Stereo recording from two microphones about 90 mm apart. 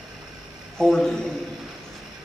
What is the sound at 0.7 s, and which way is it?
Speech, 5° left (ahead or behind).